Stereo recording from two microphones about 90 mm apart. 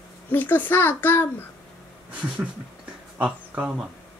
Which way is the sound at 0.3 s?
20° left (ahead or behind).